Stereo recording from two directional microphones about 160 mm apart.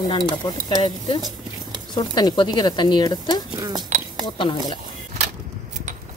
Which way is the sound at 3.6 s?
25° right (ahead or behind).